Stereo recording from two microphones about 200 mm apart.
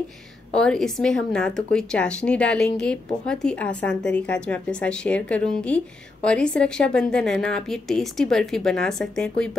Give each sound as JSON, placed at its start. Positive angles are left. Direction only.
{"t": 0.5, "sound": "speech", "side_deg": 5}